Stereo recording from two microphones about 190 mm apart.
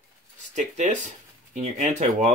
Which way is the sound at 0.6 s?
40° right (ahead or behind).